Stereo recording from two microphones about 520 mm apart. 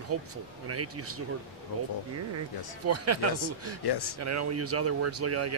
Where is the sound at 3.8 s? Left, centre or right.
Left.